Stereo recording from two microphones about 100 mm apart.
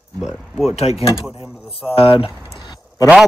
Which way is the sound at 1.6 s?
70° left (ahead or behind).